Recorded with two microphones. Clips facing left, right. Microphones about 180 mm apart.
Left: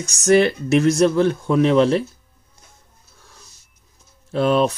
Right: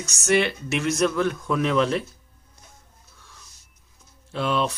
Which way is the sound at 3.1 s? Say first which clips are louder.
Left 3 dB; 40° left (ahead or behind).